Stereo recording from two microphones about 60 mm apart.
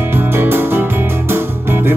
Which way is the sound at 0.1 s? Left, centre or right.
Right.